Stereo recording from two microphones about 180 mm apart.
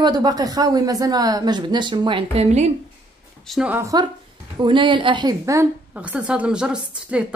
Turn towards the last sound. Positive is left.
turn(degrees=-5)  # may be behind; listen again after turning